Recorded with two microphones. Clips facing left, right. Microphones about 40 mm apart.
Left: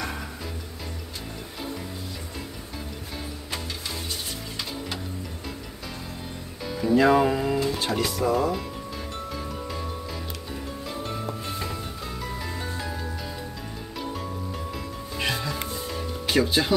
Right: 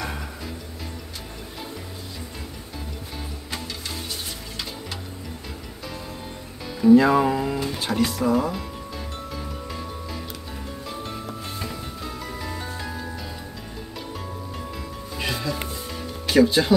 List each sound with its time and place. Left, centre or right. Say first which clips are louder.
6.8 s speech: right 4 dB; centre
9.3 s music: left 1 dB; centre
10.9 s music: left 2 dB; centre
14.7 s music: even; centre